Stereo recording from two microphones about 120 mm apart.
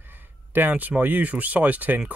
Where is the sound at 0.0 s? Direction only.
15° right (ahead or behind).